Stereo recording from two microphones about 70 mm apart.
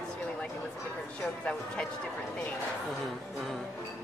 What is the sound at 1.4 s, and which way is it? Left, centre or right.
Speech, centre.